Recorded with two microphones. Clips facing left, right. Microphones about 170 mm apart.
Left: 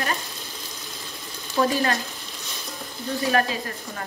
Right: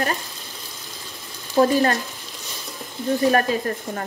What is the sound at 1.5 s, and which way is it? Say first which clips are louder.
Speech: right 5 dB; 40° right (ahead or behind).